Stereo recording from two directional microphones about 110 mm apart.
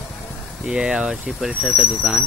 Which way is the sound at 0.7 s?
10° right (ahead or behind).